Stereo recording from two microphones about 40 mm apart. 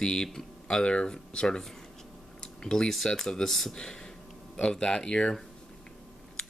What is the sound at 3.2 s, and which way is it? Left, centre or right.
Speech, centre.